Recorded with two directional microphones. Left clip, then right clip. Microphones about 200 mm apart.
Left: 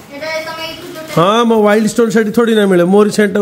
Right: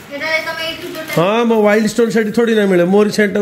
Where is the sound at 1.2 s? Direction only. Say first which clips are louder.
Left 3 dB; 15° left (ahead or behind).